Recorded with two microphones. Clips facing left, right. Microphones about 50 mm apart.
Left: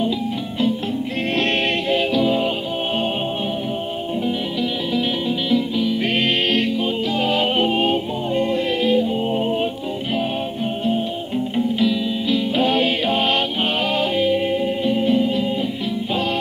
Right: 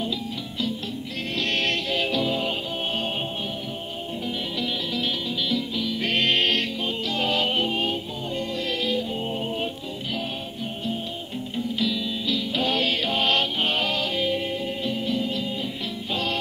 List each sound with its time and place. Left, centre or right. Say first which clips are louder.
2.1 s music: left 7 dB; centre
5.5 s music: left 10 dB; centre
11.8 s music: left 7 dB; left